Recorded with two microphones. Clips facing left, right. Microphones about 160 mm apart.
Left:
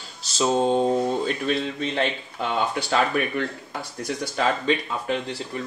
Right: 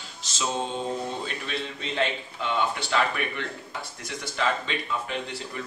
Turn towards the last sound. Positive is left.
turn(degrees=40)  # may be behind; listen again after turning